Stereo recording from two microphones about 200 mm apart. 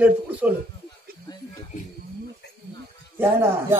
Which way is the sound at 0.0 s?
10° right (ahead or behind).